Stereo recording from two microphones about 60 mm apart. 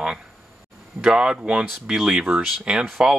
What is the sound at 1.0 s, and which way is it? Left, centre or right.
Speech, centre.